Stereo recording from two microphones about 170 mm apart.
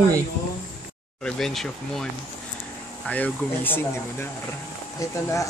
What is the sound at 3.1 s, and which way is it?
Speech, 10° left (ahead or behind).